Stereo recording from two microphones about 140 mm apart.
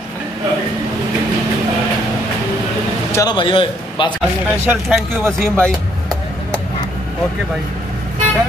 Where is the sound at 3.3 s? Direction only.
35° left (ahead or behind).